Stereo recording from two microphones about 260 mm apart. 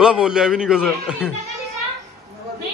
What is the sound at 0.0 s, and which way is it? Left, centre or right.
Speech, centre.